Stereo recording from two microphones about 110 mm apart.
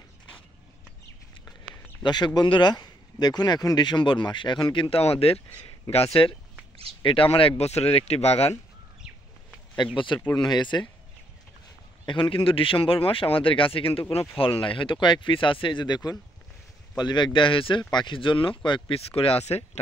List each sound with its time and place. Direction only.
2.0 s speech: 40° left (ahead or behind); by 8.5 s 70° left (ahead or behind)
9.9 s speech: 45° left (ahead or behind)
12.1 s speech: 45° left (ahead or behind)
18.9 s speech: 60° left (ahead or behind); by 19.8 s 75° left (ahead or behind)